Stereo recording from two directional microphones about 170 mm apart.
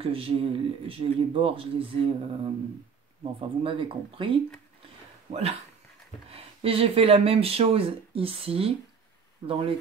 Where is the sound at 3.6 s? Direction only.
30° right (ahead or behind).